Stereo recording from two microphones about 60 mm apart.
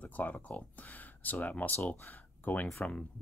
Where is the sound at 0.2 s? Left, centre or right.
Left.